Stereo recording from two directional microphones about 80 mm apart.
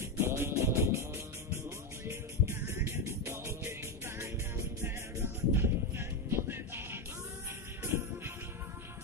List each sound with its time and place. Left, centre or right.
0.0 s music: right